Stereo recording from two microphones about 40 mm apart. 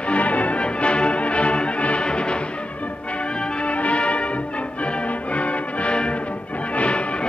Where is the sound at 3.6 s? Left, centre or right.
Left.